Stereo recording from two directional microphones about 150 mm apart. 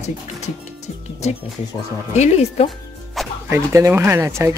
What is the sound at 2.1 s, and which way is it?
Speech, 45° left (ahead or behind).